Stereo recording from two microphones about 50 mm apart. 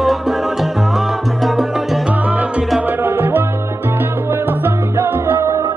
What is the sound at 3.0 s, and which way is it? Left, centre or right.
Salsa music, right.